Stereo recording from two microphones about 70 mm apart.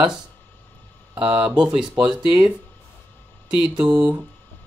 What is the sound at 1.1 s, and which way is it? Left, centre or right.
Speech, centre.